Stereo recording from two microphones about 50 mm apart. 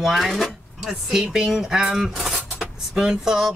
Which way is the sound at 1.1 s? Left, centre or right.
Centre.